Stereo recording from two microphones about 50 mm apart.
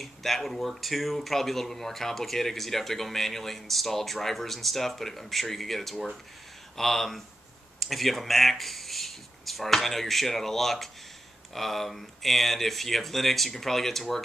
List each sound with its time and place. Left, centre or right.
0.0 s speech: centre